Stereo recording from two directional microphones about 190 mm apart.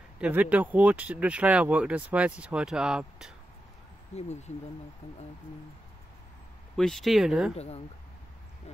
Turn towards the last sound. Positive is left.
turn(degrees=35)  # may be behind; listen again after turning